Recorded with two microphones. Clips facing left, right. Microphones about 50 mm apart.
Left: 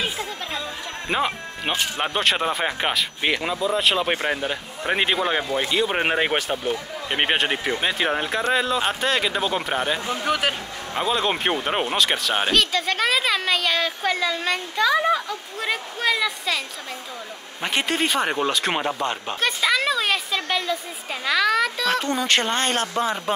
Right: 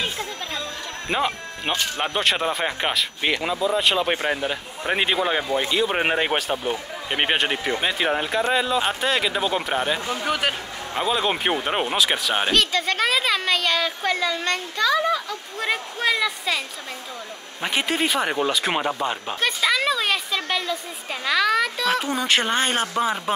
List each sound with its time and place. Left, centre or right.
0.0 s music: centre
2.0 s speech: centre
14.8 s speech: centre
15.6 s speech: centre